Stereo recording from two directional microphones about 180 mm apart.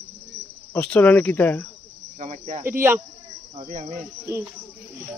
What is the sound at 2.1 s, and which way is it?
Speech, 40° right (ahead or behind).